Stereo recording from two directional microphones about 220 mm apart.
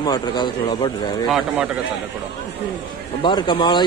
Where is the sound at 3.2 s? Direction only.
20° left (ahead or behind).